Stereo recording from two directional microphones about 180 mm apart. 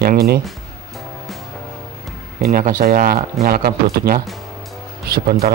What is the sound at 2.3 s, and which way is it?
Speech, 55° right (ahead or behind).